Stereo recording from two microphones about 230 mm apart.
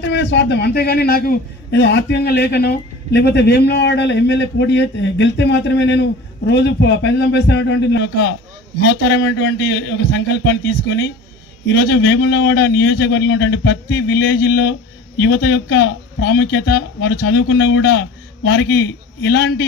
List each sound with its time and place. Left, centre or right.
0.0 s a man's voice: left